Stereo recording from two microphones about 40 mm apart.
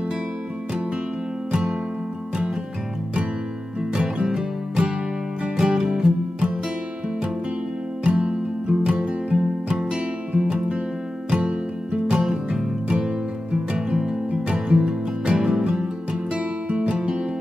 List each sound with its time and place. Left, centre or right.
1.5 s music: centre
3.9 s music: right
5.6 s music: centre
8.0 s music: right
9.3 s music: centre